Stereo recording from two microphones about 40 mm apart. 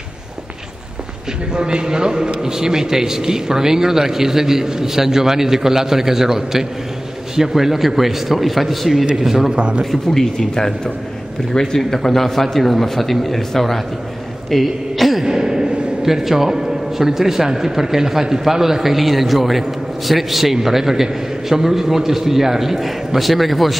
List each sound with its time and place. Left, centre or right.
1.5 s a man's voice: right
9.6 s speech: right
9.8 s speech: centre
15.2 s a man's voice: centre